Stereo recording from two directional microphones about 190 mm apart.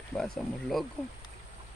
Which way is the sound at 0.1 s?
Centre (ahead or behind).